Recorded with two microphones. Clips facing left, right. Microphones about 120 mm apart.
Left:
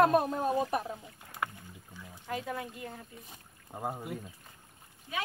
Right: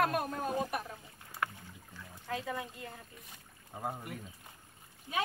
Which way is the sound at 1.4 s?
10° left (ahead or behind).